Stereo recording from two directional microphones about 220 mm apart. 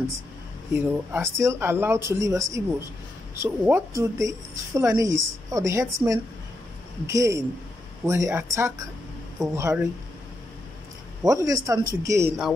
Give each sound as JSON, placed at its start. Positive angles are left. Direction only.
{"t": 0.7, "sound": "speech", "side_deg": -10}
{"t": 11.2, "sound": "speech", "side_deg": -15}